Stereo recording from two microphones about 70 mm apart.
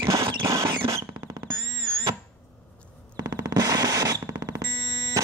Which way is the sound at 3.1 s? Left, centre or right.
Right.